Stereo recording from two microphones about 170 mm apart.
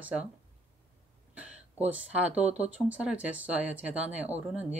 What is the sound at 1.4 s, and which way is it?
Speech, 10° right (ahead or behind).